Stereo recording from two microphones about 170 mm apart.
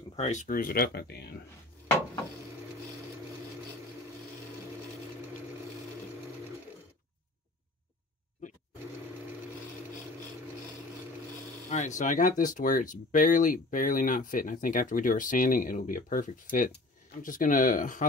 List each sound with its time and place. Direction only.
0.1 s speech: 40° left (ahead or behind); by 1.3 s 70° left (ahead or behind)
12.0 s speech: 50° left (ahead or behind)